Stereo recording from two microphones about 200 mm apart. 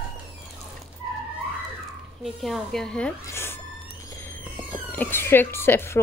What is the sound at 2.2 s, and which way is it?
Speech, centre (ahead or behind).